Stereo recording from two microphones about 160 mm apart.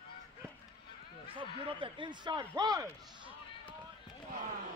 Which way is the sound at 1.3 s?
30° right (ahead or behind).